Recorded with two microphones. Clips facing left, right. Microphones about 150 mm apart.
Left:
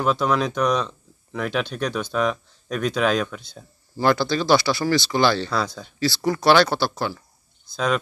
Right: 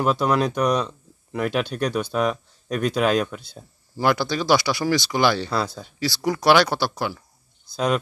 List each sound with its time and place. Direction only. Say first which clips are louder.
0.0 s speech: right 1 dB; 10° right (ahead or behind)